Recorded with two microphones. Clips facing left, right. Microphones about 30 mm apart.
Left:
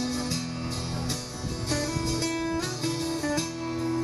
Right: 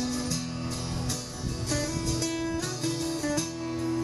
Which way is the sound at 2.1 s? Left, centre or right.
Left.